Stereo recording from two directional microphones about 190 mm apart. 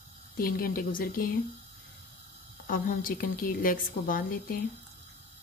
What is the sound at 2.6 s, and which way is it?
A woman's voice, 45° left (ahead or behind).